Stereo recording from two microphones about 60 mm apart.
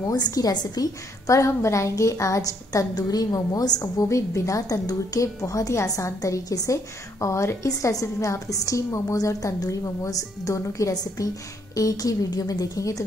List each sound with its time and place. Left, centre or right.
0.3 s a woman's voice: left
3.8 s a woman's voice: left